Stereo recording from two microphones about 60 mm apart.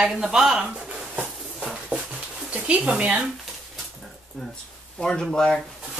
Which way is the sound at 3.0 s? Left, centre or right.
Right.